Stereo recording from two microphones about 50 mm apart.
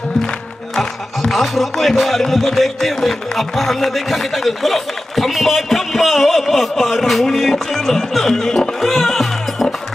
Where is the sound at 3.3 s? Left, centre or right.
Centre.